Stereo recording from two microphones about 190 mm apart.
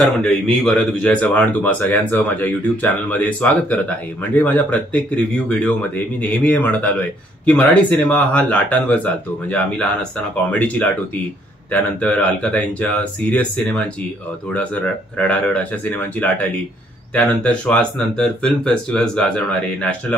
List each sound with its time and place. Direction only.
0.0 s speech: 5° left (ahead or behind)
11.7 s speech: 5° left (ahead or behind)